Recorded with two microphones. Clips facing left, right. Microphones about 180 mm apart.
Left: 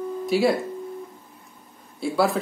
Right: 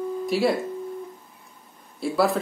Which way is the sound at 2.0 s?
Centre (ahead or behind).